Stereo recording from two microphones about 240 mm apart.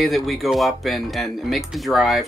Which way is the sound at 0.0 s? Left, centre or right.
Centre.